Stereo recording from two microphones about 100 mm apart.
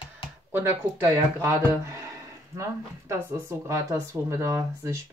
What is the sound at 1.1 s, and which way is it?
Speech, 35° right (ahead or behind).